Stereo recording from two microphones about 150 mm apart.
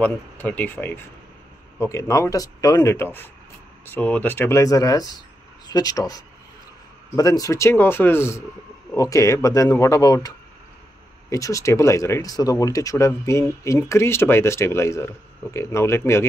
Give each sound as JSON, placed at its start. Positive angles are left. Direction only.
{"t": 0.0, "sound": "speech", "side_deg": 10}